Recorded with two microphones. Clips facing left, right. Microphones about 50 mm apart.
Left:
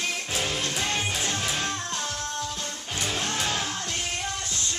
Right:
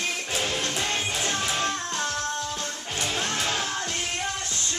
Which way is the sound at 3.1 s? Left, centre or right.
Centre.